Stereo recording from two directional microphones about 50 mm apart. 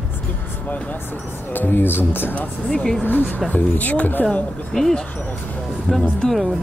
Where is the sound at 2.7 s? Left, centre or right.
Centre.